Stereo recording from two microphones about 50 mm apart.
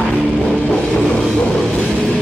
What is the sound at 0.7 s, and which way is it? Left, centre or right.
Music, centre.